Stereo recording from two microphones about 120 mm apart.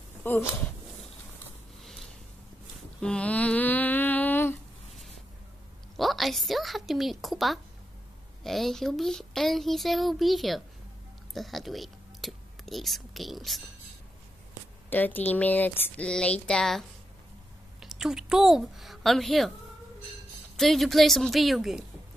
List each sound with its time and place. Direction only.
0.2 s speech: 20° left (ahead or behind)
1.8 s a sound: centre (ahead or behind)
3.0 s mantra: 10° left (ahead or behind)
5.9 s a child's voice: centre (ahead or behind)
14.9 s a woman's voice: 15° left (ahead or behind)
20.5 s a child's voice: centre (ahead or behind)